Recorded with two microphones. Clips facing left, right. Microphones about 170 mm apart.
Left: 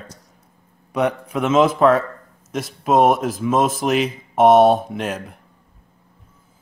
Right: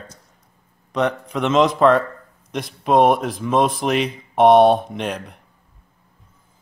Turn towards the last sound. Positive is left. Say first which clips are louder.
# left 1 dB
turn(degrees=5)  # may be behind; listen again after turning